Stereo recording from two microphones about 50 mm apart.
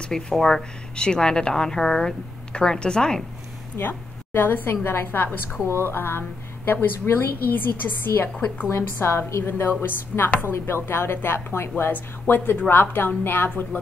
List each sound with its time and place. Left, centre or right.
0.0 s speech: centre
3.7 s a woman's voice: left
9.0 s a woman's voice: left
11.8 s speech: left
12.6 s a woman's voice: left